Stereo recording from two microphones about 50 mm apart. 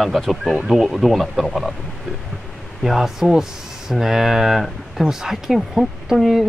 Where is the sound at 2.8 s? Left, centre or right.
Centre.